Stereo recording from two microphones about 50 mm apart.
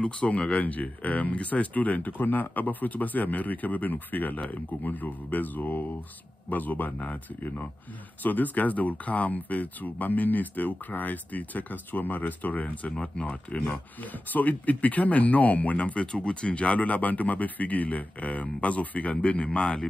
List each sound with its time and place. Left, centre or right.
0.0 s speech: left
12.9 s speech: left
19.6 s a man's voice: centre